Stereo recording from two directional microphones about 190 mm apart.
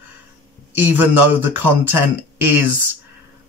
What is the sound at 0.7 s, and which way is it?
Speech, 10° right (ahead or behind).